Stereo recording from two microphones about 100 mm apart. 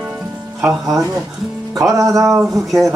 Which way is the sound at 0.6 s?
Centre (ahead or behind).